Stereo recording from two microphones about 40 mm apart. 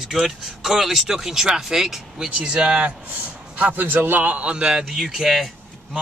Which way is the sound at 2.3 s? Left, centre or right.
Right.